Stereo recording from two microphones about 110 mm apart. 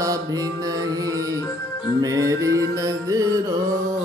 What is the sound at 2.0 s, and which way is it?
Music, 30° right (ahead or behind).